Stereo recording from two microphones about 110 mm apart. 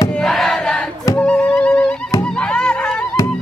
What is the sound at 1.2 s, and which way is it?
Music, 10° left (ahead or behind).